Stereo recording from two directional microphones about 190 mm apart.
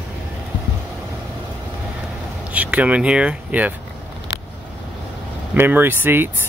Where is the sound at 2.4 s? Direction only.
5° right (ahead or behind).